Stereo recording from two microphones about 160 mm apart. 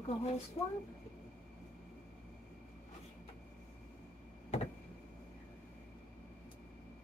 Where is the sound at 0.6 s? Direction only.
40° left (ahead or behind).